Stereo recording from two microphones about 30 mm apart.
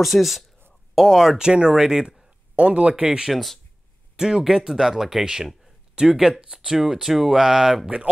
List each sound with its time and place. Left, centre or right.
0.0 s speech: centre
0.9 s speech: centre
1.4 s speech: right
2.5 s speech: right
3.3 s speech: centre
4.2 s speech: centre
6.7 s speech: centre